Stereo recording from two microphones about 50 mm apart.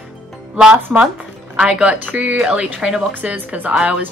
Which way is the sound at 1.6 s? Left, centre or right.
Right.